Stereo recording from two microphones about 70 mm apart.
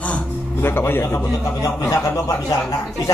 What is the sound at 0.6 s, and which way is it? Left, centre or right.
Speech, left.